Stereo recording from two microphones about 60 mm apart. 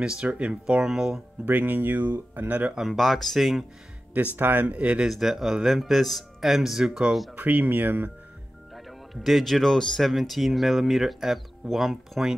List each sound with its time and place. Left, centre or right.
0.2 s speech: centre
1.4 s speech: right
2.9 s speech: centre
4.4 s speech: right
4.6 s speech: right
5.0 s speech: centre
7.3 s speech: right
8.7 s speech: centre